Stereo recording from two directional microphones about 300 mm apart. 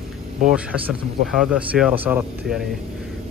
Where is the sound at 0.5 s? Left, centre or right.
Centre.